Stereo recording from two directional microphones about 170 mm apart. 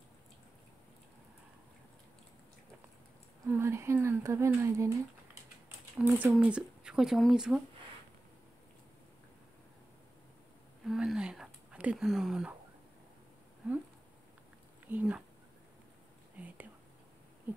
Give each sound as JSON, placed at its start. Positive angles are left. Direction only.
{"t": 3.4, "sound": "speech", "side_deg": -15}
{"t": 5.9, "sound": "speech", "side_deg": -10}
{"t": 10.9, "sound": "a sound", "side_deg": 0}
{"t": 14.9, "sound": "speech", "side_deg": -10}
{"t": 16.4, "sound": "whispering", "side_deg": -10}